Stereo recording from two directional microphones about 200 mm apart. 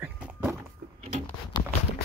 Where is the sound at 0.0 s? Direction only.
5° right (ahead or behind).